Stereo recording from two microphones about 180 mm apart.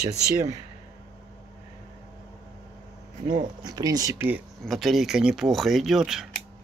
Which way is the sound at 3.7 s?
20° right (ahead or behind).